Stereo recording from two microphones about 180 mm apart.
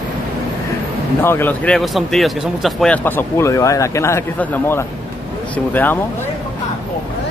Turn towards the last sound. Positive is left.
turn(degrees=10)  # may be behind; listen again after turning